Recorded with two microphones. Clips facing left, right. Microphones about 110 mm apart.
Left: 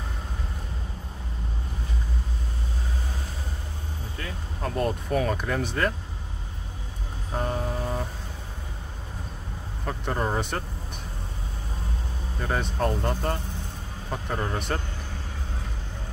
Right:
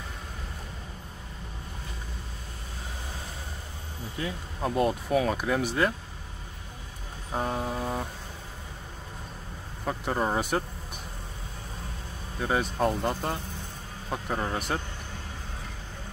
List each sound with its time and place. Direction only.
4.2 s speech: 15° right (ahead or behind)
7.3 s vehicle: 5° right (ahead or behind)
9.8 s speech: 5° right (ahead or behind)
12.4 s speech: 5° right (ahead or behind)